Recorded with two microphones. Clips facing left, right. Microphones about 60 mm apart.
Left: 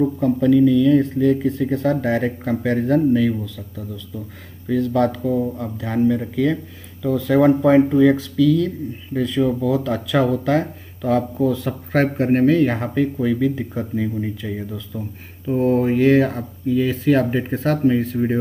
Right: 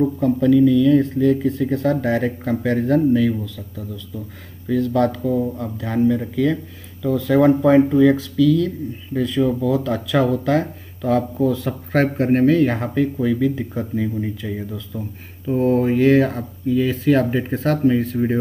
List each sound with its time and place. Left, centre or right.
0.4 s speech: centre